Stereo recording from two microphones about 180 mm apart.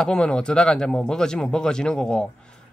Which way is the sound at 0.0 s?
5° left (ahead or behind).